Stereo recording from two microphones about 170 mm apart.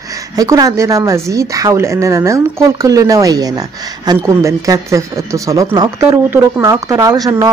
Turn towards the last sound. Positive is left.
turn(degrees=-20)  # may be behind; listen again after turning